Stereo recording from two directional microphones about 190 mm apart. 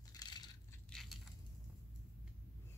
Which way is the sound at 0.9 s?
Centre (ahead or behind).